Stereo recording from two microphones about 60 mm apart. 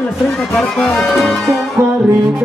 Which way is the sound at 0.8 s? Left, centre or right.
Centre.